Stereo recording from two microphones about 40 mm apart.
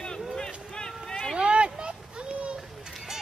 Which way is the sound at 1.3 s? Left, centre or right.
Right.